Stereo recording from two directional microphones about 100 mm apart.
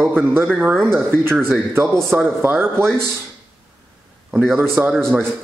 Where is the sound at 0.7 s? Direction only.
5° left (ahead or behind).